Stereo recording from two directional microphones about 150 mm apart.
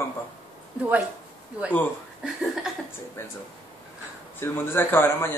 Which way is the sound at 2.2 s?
Centre (ahead or behind).